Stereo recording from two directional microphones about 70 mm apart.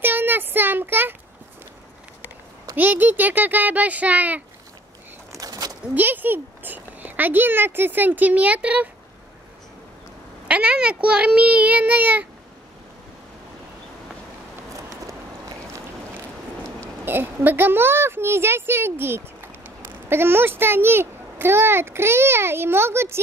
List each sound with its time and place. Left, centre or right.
0.0 s a sound: right
2.7 s speech: right
5.3 s bird: right
5.9 s speech: right
10.5 s a child's voice: centre
17.0 s a child's voice: right